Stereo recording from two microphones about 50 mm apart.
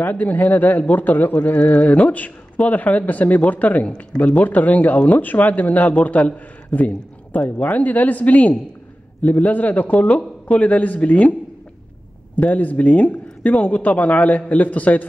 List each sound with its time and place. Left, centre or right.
0.0 s speech: left
12.4 s speech: left